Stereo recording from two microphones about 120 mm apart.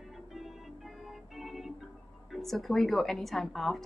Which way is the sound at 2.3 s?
Centre (ahead or behind).